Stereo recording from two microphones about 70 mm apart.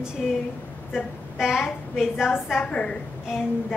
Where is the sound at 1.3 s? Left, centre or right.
Centre.